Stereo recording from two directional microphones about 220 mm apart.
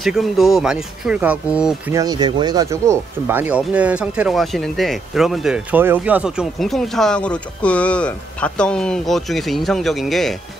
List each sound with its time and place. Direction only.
0.0 s speech: centre (ahead or behind)
2.0 s speech: 20° right (ahead or behind); by 10.3 s centre (ahead or behind)